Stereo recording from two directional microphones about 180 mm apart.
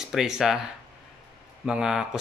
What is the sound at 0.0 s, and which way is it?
Speech, 5° right (ahead or behind).